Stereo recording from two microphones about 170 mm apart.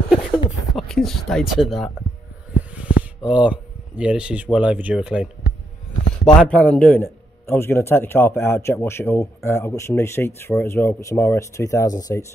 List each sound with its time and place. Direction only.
0.7 s speech: centre (ahead or behind)
2.7 s a sound: 10° right (ahead or behind)
3.3 s speech: 5° right (ahead or behind)
6.2 s speech: 5° left (ahead or behind)